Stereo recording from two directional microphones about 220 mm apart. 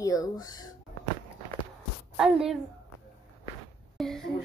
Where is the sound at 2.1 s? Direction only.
Centre (ahead or behind).